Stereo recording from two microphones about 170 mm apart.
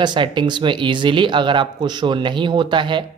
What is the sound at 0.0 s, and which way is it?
Speech, 25° right (ahead or behind).